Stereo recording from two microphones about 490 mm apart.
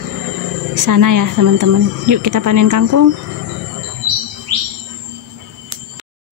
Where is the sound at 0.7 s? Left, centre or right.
Right.